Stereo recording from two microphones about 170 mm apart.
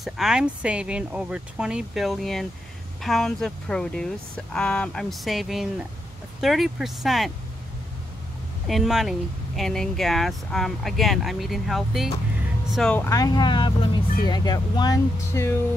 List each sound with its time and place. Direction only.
0.0 s speech: 5° right (ahead or behind)
8.6 s speech: centre (ahead or behind); by 15.5 s 20° left (ahead or behind)